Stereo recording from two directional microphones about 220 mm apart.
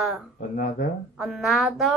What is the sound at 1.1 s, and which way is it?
Speech, centre (ahead or behind).